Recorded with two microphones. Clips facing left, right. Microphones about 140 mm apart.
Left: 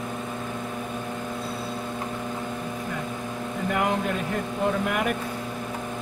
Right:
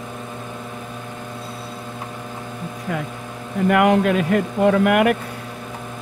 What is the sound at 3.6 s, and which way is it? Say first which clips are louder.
A man's voice: right 10 dB; 75° right (ahead or behind).